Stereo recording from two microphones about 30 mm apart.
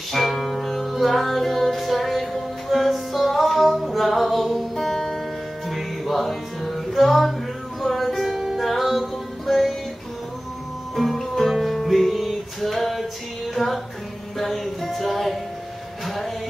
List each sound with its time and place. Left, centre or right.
0.1 s music: centre
11.0 s music: centre
13.6 s music: centre
14.4 s music: centre